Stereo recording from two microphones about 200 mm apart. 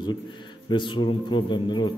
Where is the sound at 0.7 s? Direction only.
25° left (ahead or behind).